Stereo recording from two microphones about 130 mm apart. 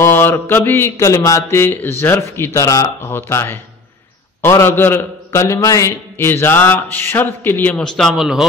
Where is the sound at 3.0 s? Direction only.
15° left (ahead or behind).